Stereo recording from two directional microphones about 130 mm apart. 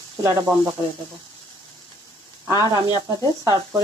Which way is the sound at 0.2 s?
20° right (ahead or behind).